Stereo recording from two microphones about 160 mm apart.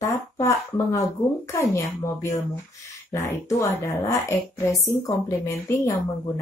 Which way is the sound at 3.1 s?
20° left (ahead or behind).